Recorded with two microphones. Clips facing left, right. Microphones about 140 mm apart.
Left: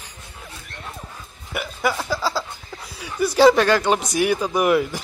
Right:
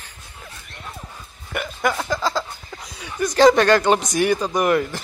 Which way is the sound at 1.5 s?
5° left (ahead or behind).